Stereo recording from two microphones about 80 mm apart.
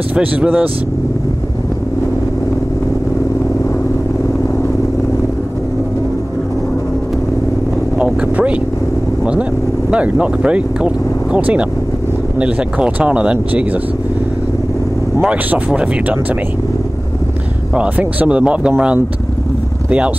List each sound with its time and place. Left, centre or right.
0.1 s speech: centre
8.0 s speech: centre
15.2 s speech: centre
17.7 s speech: centre